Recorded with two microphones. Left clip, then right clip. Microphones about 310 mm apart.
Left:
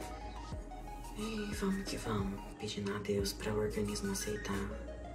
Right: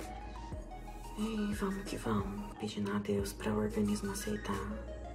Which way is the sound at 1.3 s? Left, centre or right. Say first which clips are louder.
Even; centre.